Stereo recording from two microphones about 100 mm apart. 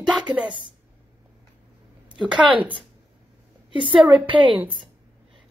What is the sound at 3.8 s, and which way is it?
Speech, 60° right (ahead or behind).